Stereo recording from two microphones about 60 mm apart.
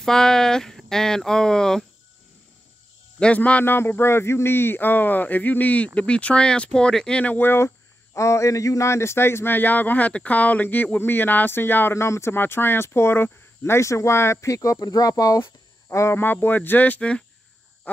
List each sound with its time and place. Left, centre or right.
0.0 s speech: centre
3.2 s speech: left
3.6 s speech: left; by 7.3 s centre
7.3 s speech: left
15.4 s a sound: left
16.2 s speech: left